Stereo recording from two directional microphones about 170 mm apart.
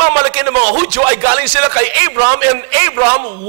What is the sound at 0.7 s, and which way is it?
A man's voice, 15° right (ahead or behind).